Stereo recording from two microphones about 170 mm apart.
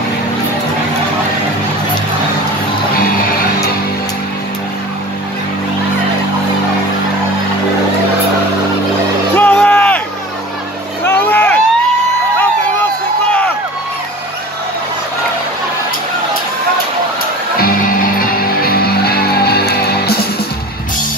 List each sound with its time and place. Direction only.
9.4 s music: 10° left (ahead or behind)
11.1 s vehicle: 10° left (ahead or behind)
17.6 s music: 55° left (ahead or behind)